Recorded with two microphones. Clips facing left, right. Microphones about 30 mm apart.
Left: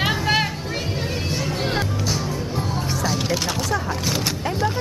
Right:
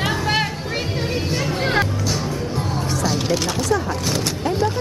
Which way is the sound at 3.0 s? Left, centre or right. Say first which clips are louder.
Right 2 dB; centre.